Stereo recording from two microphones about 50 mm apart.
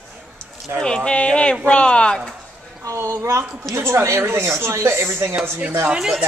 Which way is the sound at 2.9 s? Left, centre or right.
Right.